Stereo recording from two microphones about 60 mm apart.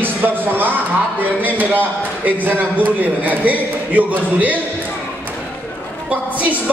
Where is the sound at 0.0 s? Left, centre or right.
Right.